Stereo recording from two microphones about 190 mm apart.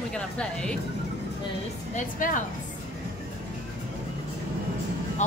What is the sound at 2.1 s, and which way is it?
Speech, 45° left (ahead or behind).